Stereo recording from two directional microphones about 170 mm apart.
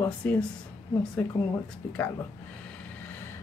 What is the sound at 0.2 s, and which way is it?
Speech, 5° left (ahead or behind).